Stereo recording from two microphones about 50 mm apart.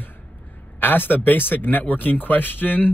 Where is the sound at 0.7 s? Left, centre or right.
Left.